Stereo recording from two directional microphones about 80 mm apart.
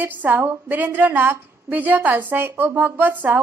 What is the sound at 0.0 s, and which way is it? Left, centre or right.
A woman's voice, right.